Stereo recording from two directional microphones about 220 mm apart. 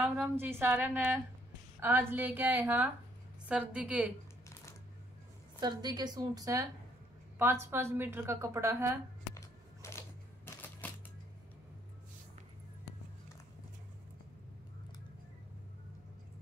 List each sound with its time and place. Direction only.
0.0 s a woman's voice: 10° right (ahead or behind)
5.6 s a woman's voice: 20° right (ahead or behind)
9.3 s a sound: 15° left (ahead or behind)